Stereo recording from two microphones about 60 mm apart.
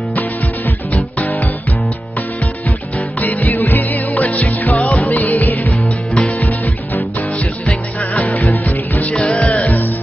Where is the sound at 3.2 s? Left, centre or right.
Left.